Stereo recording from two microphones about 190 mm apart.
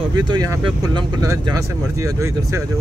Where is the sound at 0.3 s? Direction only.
20° right (ahead or behind).